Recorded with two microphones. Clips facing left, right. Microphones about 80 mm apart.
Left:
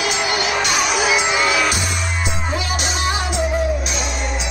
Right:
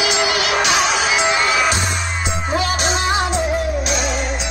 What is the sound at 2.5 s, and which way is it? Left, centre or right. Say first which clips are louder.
Music: right 7 dB; right.